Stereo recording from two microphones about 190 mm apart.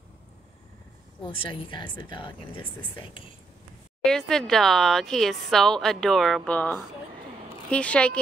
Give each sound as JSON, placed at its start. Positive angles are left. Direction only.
{"t": 1.2, "sound": "a woman's voice", "side_deg": 25}
{"t": 4.0, "sound": "speech", "side_deg": 5}